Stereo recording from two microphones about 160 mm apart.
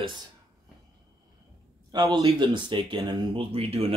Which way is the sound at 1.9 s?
25° right (ahead or behind).